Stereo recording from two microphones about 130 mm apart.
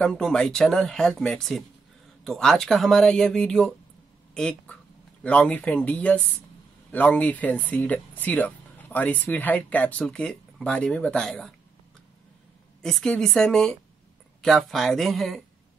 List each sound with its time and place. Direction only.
0.0 s speech: 5° left (ahead or behind)
12.8 s speech: 5° left (ahead or behind)